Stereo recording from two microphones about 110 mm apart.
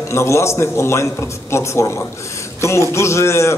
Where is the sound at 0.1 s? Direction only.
25° left (ahead or behind).